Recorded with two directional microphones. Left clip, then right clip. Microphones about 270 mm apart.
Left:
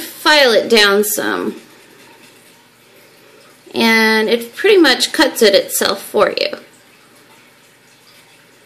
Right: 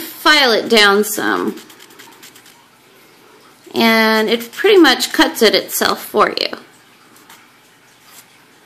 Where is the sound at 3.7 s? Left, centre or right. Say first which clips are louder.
Even; centre.